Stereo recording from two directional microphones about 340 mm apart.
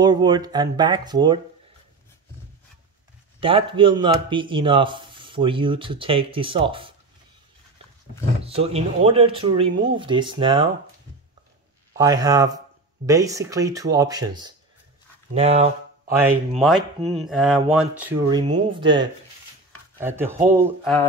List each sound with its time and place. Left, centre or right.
0.0 s speech: centre
3.3 s speech: centre
8.5 s speech: centre
11.9 s speech: centre
16.2 s speech: centre